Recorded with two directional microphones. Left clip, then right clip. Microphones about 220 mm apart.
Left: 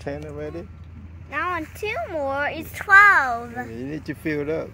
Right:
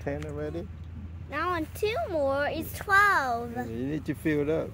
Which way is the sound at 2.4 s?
15° right (ahead or behind).